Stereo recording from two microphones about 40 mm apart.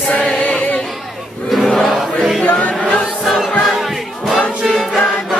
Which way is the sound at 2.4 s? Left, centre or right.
Left.